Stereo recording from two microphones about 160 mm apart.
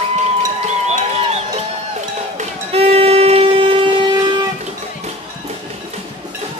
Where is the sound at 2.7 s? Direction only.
40° right (ahead or behind).